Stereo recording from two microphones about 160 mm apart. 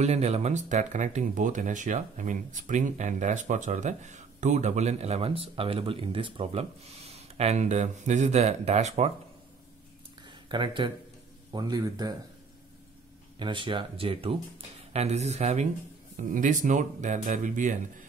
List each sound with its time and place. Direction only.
0.0 s speech: 45° right (ahead or behind)
10.2 s a sound: 30° right (ahead or behind)
11.5 s speech: 25° right (ahead or behind)
13.4 s speech: 30° right (ahead or behind)
16.2 s speech: 55° right (ahead or behind)